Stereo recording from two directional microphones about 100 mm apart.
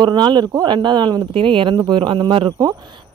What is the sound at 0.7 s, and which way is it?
A woman's voice, 50° right (ahead or behind).